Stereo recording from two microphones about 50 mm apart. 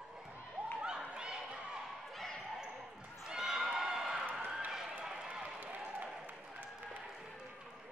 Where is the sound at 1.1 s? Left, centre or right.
Centre.